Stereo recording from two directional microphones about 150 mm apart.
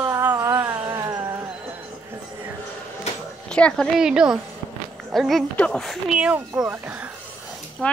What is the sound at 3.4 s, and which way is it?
Speech, 5° left (ahead or behind).